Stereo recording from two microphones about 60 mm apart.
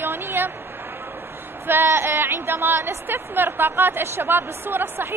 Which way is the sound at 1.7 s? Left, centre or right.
Right.